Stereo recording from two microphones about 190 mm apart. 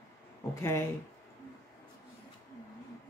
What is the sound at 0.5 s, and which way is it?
Speech, 15° left (ahead or behind).